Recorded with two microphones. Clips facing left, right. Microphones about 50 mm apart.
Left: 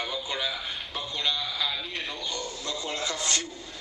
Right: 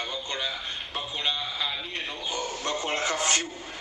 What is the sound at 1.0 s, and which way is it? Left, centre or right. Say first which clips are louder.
Speech: even; centre.